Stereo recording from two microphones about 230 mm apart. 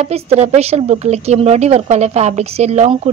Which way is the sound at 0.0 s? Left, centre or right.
Right.